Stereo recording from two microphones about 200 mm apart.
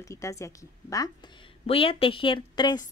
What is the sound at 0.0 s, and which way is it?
A woman's voice, 15° left (ahead or behind).